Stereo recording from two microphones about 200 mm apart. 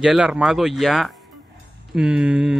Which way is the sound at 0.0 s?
5° right (ahead or behind).